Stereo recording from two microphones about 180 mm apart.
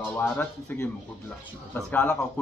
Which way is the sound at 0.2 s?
10° left (ahead or behind).